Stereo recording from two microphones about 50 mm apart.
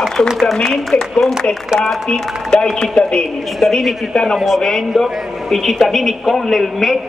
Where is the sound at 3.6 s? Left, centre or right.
Centre.